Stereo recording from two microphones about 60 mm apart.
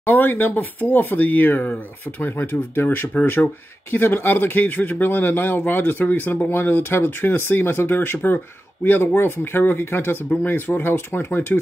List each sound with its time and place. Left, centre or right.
0.0 s speech: left